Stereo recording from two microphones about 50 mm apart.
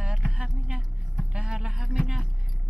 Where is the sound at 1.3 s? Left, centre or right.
Centre.